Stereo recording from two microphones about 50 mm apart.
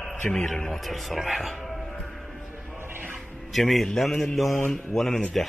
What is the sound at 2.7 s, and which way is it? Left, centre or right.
Music, right.